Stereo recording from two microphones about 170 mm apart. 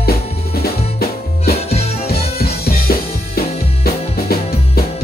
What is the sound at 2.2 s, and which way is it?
Music, 65° left (ahead or behind).